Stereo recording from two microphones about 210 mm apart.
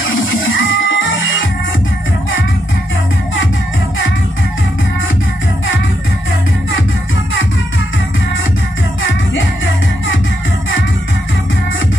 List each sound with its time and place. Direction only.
0.6 s music: 65° left (ahead or behind)